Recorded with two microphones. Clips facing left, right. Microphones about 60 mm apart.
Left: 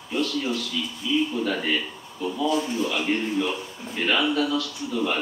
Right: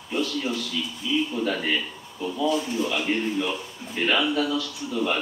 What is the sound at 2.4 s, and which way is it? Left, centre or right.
Speech, left.